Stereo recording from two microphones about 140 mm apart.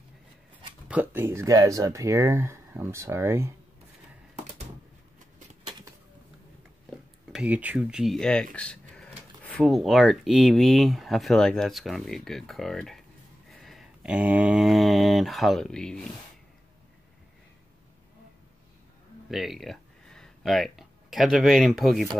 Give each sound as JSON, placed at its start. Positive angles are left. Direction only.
{"t": 0.8, "sound": "speech", "side_deg": -10}
{"t": 7.3, "sound": "speech", "side_deg": -10}
{"t": 19.3, "sound": "speech", "side_deg": 0}